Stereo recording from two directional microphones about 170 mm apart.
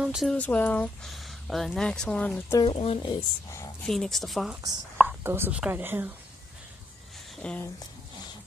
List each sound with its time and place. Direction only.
0.0 s speech: centre (ahead or behind)
2.6 s speech: 30° left (ahead or behind)
3.8 s speech: centre (ahead or behind)
5.0 s speech: 15° right (ahead or behind)
7.4 s speech: 5° left (ahead or behind)